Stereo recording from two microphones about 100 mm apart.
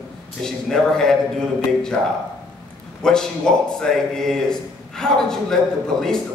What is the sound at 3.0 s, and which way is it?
A man's voice, 5° left (ahead or behind).